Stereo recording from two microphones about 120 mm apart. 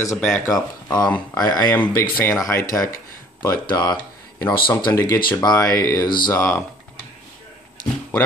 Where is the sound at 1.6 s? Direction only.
15° left (ahead or behind).